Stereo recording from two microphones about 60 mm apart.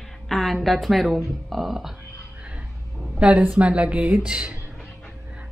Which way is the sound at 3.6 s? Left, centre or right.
Centre.